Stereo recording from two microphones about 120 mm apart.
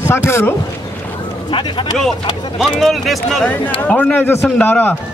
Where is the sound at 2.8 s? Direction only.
Centre (ahead or behind).